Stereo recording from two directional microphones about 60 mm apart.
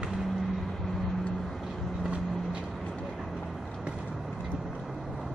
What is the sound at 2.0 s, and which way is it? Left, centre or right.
Vehicle, centre.